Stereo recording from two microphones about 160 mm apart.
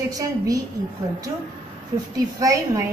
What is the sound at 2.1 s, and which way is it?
Speech, 20° right (ahead or behind).